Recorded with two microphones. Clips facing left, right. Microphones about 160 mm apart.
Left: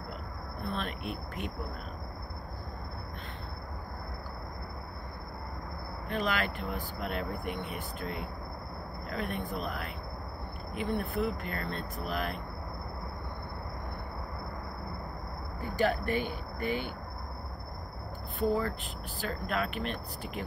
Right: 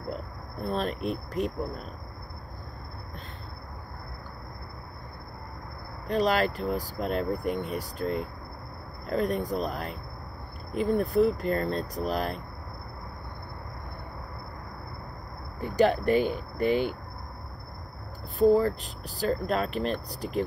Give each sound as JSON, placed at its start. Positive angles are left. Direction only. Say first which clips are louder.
{"t": 0.1, "sound": "speech", "louder": "right 5 dB", "side_deg": -40}
{"t": 6.0, "sound": "speech", "louder": "right 7 dB", "side_deg": -35}
{"t": 15.8, "sound": "speech", "louder": "right 7 dB", "side_deg": -40}
{"t": 18.4, "sound": "speech", "louder": "right 9 dB", "side_deg": -35}